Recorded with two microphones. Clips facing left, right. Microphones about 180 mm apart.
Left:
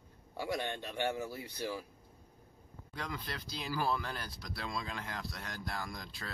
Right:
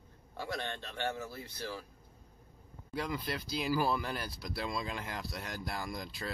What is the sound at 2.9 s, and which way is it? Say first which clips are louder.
Speech: right 5 dB; 5° right (ahead or behind).